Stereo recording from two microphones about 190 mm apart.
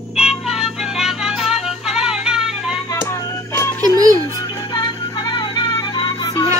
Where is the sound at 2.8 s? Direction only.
15° left (ahead or behind).